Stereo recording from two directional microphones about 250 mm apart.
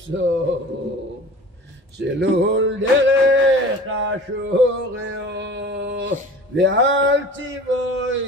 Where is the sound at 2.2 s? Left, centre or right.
Right.